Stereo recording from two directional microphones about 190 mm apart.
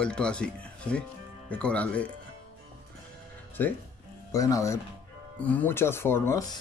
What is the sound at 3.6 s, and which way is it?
Speech, 10° left (ahead or behind).